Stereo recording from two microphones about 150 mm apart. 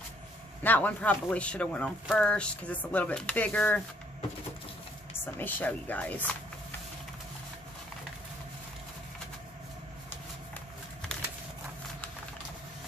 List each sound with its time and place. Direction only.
0.7 s speech: 10° left (ahead or behind)
5.2 s speech: 10° left (ahead or behind)